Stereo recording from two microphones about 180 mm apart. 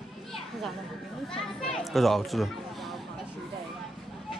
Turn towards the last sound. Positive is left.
turn(degrees=0)  # may be behind; listen again after turning